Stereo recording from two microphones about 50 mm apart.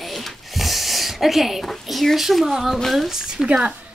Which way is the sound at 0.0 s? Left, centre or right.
Centre.